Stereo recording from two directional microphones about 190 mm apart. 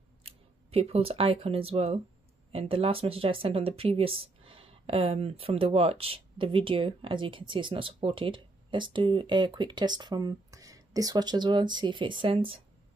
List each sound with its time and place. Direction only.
0.2 s speech: 30° right (ahead or behind)